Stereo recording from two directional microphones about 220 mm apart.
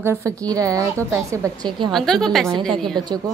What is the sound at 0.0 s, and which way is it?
A woman's voice, 10° right (ahead or behind).